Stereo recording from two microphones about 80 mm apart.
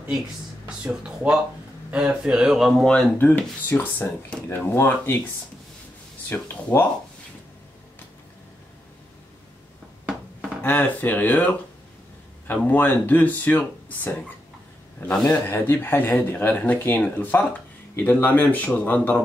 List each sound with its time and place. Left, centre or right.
0.7 s speech: centre
2.8 s speech: centre
3.2 s speech: left
6.2 s speech: left
10.6 s speech: left
12.6 s speech: left
15.3 s speech: left